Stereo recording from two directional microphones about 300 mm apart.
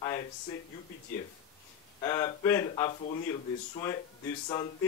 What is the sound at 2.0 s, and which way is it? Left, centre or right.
Speech, centre.